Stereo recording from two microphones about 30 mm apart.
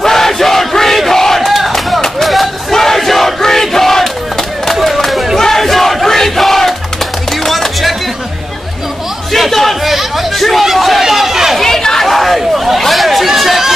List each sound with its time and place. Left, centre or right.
0.0 s battle cry: centre
1.4 s crowd: centre
2.2 s a sound: centre
2.7 s crowd: centre
4.8 s a sound: centre
5.4 s battle cry: centre
7.4 s music: centre
9.3 s a sound: centre
9.8 s hubbub: centre
11.0 s chatter: centre
11.6 s chatter: centre
12.1 s chatter: centre